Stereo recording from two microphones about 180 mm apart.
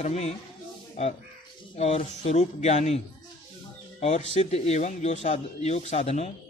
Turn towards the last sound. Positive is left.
turn(degrees=35)  # may be behind; listen again after turning